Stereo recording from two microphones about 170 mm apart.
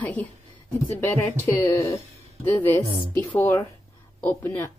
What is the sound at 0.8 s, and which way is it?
Speech, 10° left (ahead or behind).